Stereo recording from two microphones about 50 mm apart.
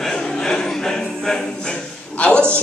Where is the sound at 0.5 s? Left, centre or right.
Centre.